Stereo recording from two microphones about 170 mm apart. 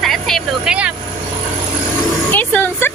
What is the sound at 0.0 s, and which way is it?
Vehicle, centre (ahead or behind).